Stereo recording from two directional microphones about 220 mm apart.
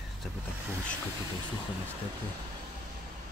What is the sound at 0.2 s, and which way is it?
Vehicle, centre (ahead or behind).